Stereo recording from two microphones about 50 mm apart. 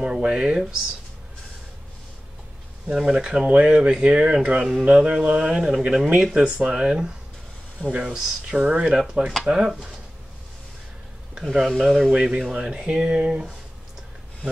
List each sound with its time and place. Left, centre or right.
0.0 s speech: centre
3.1 s speech: centre
11.5 s speech: centre
12.1 s speech: centre